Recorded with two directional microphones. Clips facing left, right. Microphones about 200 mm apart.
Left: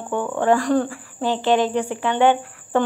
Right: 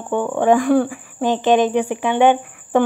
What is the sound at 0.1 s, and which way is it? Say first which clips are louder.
Speech: right 3 dB; 15° right (ahead or behind).